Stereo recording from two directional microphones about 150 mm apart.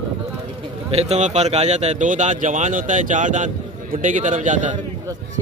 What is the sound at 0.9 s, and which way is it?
Speech, 45° right (ahead or behind).